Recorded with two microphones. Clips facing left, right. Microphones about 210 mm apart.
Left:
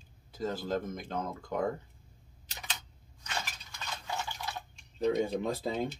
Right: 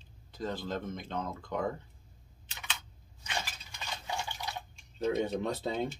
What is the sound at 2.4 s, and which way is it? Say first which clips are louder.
Camera: even; 40° left (ahead or behind).